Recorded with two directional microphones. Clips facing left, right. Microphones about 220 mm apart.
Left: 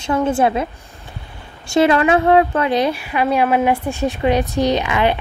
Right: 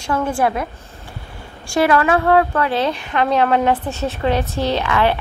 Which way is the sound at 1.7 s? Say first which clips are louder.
Left 2 dB; 20° left (ahead or behind).